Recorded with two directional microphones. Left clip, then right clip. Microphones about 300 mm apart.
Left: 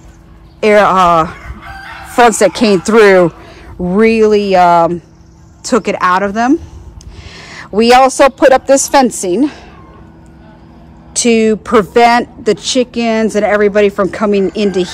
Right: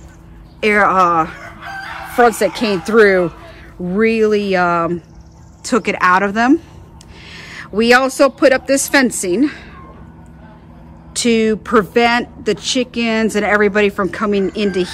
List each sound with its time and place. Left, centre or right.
0.6 s speech: centre
1.6 s crowing: centre
2.2 s a woman's voice: centre
11.1 s speech: centre